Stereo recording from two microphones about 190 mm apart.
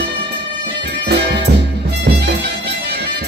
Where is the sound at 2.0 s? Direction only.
60° right (ahead or behind).